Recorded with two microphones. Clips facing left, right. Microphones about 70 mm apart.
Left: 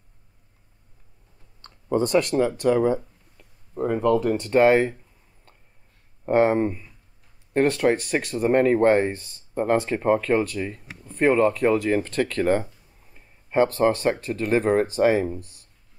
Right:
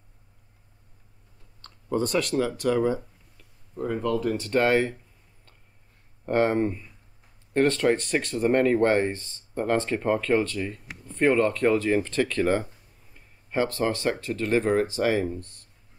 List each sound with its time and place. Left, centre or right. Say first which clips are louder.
1.6 s clicking: left 4 dB; centre
2.6 s speech: left 3 dB; centre
3.3 s a sound: left 5 dB; left
4.1 s speech: left 5 dB; left
4.4 s speech: left 4 dB; centre
6.2 s speech: left 4 dB; centre
13.1 s a sound: left 5 dB; centre
14.2 s speech: left 2 dB; centre